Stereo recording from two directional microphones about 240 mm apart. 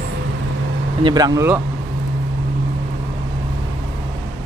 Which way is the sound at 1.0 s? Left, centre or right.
Centre.